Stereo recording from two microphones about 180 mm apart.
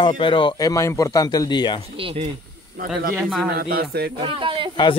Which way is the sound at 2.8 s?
55° right (ahead or behind).